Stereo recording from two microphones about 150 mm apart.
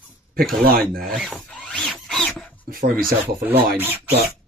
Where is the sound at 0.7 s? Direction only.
65° right (ahead or behind).